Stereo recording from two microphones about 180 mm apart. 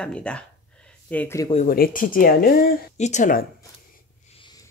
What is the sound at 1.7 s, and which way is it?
Speech, 50° left (ahead or behind).